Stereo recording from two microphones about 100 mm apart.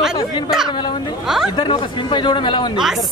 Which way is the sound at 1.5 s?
55° left (ahead or behind).